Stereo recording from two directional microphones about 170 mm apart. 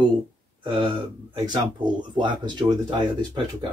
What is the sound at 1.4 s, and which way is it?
Speech, 25° right (ahead or behind).